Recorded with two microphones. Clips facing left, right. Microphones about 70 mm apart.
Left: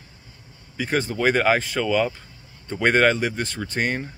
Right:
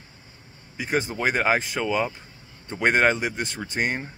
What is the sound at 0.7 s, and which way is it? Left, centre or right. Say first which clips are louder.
Speech: left 2 dB; centre.